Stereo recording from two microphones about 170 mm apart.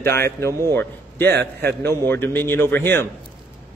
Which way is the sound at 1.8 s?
15° left (ahead or behind).